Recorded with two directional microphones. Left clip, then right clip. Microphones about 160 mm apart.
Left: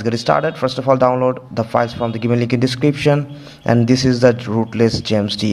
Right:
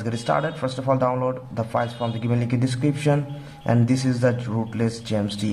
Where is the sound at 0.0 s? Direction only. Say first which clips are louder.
Left 7 dB; 35° left (ahead or behind).